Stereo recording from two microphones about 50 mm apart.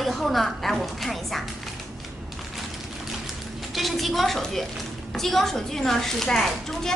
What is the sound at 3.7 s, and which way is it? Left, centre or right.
A woman's voice, centre.